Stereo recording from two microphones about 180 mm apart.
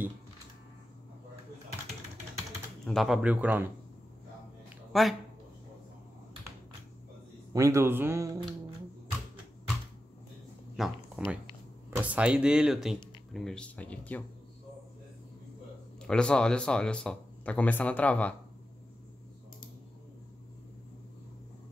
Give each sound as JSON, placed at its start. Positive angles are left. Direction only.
{"t": 2.8, "sound": "speech", "side_deg": 0}
{"t": 4.9, "sound": "speech", "side_deg": 0}
{"t": 7.5, "sound": "speech", "side_deg": -15}
{"t": 10.8, "sound": "speech", "side_deg": 0}
{"t": 16.0, "sound": "speech", "side_deg": 5}